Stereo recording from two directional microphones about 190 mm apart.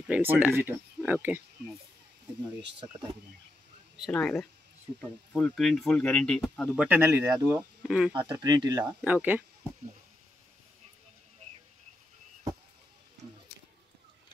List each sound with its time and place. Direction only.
0.1 s speech: 10° right (ahead or behind)
3.9 s speech: centre (ahead or behind)
8.1 s speech: 25° right (ahead or behind)
9.0 s speech: 10° right (ahead or behind)